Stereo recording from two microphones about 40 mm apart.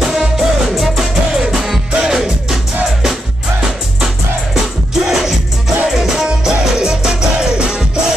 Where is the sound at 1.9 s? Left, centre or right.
Centre.